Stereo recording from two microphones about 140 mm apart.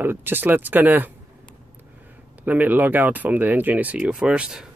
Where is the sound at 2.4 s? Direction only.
10° right (ahead or behind).